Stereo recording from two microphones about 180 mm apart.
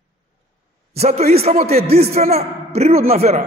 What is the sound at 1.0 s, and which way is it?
A man's voice, 35° right (ahead or behind).